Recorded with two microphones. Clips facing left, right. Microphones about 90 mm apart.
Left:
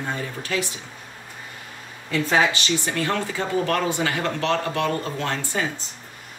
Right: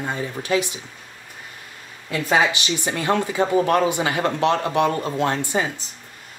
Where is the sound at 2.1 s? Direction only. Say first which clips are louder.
Right 1 dB; 15° right (ahead or behind).